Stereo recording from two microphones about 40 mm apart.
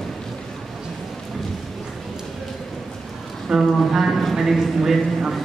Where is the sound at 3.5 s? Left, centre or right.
Centre.